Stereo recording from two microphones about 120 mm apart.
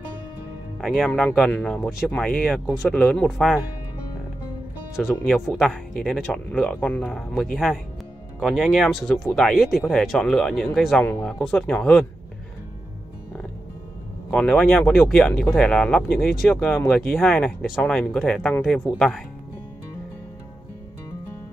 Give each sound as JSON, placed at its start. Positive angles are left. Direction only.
{"t": 0.7, "sound": "speech", "side_deg": 0}
{"t": 2.9, "sound": "speech", "side_deg": 10}
{"t": 3.3, "sound": "speech", "side_deg": 0}
{"t": 5.0, "sound": "speech", "side_deg": 5}
{"t": 7.2, "sound": "speech", "side_deg": 0}
{"t": 11.0, "sound": "speech", "side_deg": 20}
{"t": 11.2, "sound": "speech", "side_deg": 5}
{"t": 14.3, "sound": "speech", "side_deg": 10}